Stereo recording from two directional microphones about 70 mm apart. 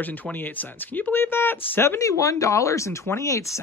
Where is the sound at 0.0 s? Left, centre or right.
Left.